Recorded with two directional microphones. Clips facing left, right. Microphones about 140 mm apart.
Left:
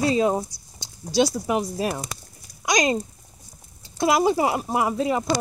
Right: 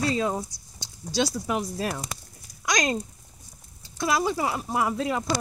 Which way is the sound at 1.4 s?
10° left (ahead or behind).